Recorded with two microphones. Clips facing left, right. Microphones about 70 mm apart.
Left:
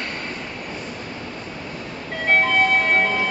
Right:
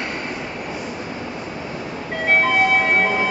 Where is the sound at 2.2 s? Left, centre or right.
Centre.